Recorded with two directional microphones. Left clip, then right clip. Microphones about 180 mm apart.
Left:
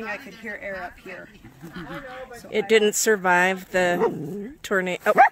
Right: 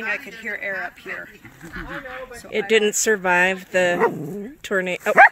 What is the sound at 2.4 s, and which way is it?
Speech, 10° left (ahead or behind).